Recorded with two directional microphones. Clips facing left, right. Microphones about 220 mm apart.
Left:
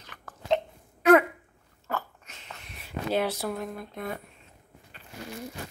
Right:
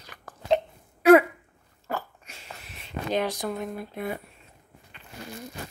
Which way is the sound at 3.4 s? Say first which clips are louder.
Right 1 dB; centre (ahead or behind).